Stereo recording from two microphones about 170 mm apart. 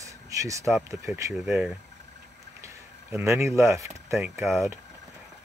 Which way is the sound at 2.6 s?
15° right (ahead or behind).